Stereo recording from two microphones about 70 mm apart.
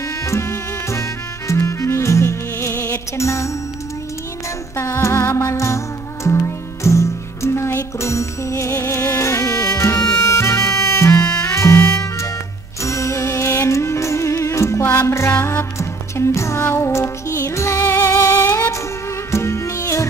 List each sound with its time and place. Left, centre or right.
0.2 s music: left
4.7 s music: left